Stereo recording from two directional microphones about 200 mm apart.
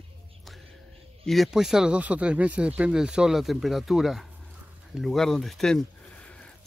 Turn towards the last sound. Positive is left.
turn(degrees=5)  # may be behind; listen again after turning